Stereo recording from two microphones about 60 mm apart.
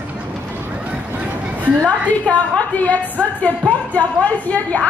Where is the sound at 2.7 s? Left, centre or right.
Left.